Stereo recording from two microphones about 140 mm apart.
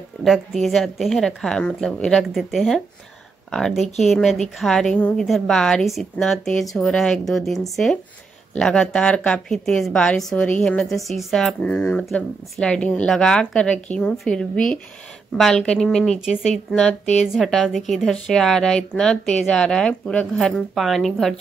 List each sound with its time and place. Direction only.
0.2 s a woman's voice: centre (ahead or behind)
17.0 s a woman's voice: 55° left (ahead or behind)
17.3 s a woman's voice: centre (ahead or behind)